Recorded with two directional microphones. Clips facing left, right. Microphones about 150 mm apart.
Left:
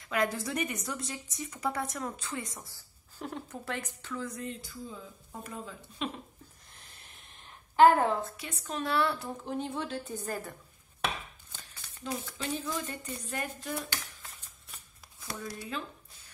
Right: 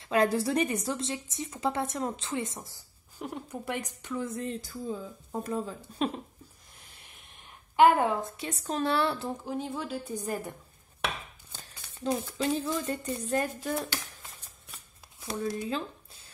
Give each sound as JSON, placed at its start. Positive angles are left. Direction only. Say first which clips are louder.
{"t": 0.0, "sound": "a woman's voice", "louder": "right 6 dB", "side_deg": -30}
{"t": 8.0, "sound": "a woman's voice", "louder": "right 1 dB", "side_deg": -10}
{"t": 8.4, "sound": "a woman's voice", "louder": "right 5 dB", "side_deg": -30}
{"t": 9.4, "sound": "a woman's voice", "louder": "right 1 dB", "side_deg": -5}
{"t": 12.0, "sound": "a woman's voice", "louder": "right 7 dB", "side_deg": -35}
{"t": 15.1, "sound": "a woman's voice", "louder": "right 8 dB", "side_deg": -25}